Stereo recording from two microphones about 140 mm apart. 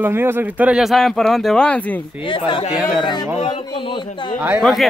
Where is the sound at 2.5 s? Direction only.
35° left (ahead or behind).